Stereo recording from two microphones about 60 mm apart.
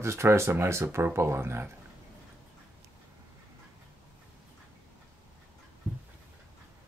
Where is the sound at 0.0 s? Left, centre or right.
Right.